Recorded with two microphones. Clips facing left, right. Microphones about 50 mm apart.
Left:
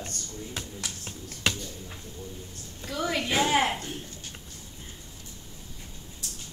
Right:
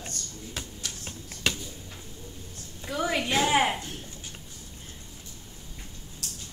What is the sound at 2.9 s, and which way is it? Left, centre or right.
Speech, centre.